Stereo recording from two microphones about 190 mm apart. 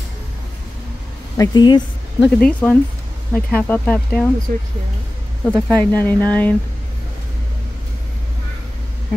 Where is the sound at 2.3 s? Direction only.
5° left (ahead or behind).